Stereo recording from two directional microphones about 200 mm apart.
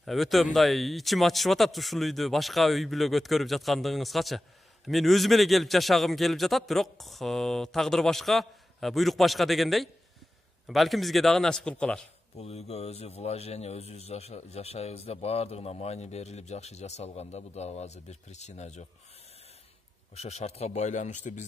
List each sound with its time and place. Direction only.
0.0 s a man's voice: centre (ahead or behind)
12.4 s speech: 30° left (ahead or behind)
20.2 s speech: 30° left (ahead or behind)